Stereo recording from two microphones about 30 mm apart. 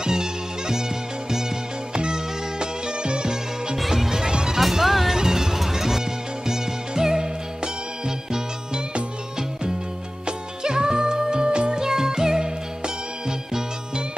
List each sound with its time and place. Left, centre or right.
0.0 s music: centre
2.0 s music: right
4.0 s music: centre
4.6 s music: centre; by 7.7 s right
10.2 s music: right
11.8 s music: centre